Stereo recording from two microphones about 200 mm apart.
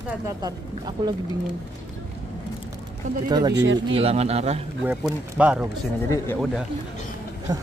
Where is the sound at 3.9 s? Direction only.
30° right (ahead or behind).